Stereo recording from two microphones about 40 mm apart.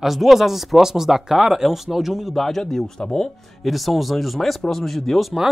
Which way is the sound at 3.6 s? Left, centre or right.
Centre.